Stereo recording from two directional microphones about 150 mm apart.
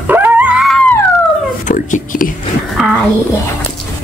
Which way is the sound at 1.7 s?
60° left (ahead or behind).